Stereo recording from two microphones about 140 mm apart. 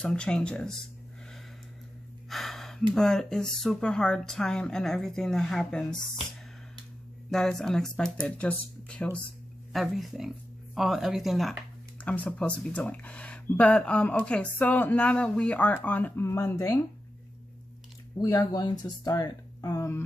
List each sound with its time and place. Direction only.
0.0 s speech: 5° left (ahead or behind)
2.2 s speech: centre (ahead or behind)
7.2 s speech: 5° left (ahead or behind)
12.0 s speech: 10° left (ahead or behind)
18.1 s speech: 25° left (ahead or behind)